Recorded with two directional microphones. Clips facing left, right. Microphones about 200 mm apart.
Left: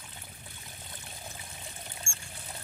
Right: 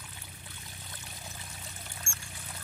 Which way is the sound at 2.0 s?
25° left (ahead or behind).